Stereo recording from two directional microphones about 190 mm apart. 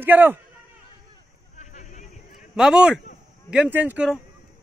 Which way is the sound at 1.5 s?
40° left (ahead or behind).